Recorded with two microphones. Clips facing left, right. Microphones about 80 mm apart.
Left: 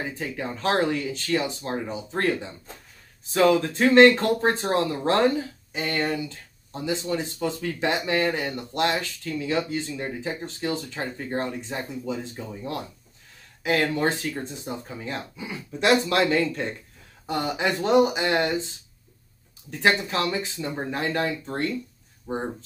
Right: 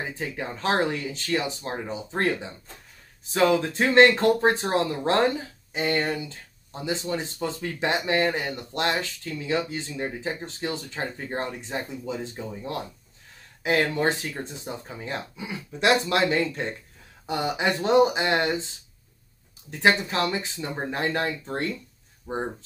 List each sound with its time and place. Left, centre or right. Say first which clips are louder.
0.1 s speech: left 1 dB; right
19.8 s speech: right 1 dB; right